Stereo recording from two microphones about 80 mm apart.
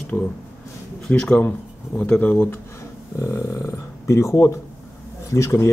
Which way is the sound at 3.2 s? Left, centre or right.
Left.